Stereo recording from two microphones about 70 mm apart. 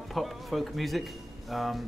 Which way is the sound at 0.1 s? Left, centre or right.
Centre.